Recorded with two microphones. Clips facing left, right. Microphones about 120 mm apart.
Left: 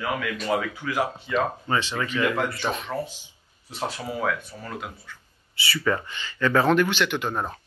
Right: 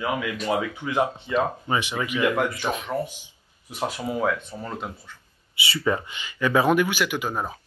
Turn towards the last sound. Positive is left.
turn(degrees=-5)  # may be behind; listen again after turning